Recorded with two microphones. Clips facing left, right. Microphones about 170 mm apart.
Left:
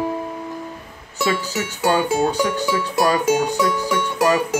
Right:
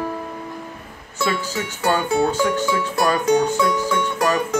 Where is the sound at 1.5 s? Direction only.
20° left (ahead or behind).